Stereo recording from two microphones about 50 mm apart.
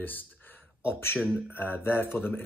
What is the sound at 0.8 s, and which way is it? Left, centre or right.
Speech, left.